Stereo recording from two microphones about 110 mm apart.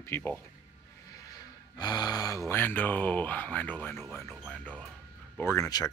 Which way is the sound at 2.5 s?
20° left (ahead or behind).